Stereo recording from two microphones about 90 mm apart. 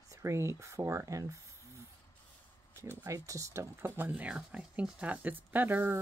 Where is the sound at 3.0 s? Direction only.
35° right (ahead or behind).